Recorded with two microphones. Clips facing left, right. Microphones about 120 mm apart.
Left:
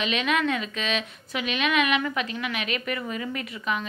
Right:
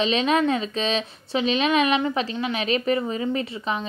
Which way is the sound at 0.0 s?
30° right (ahead or behind).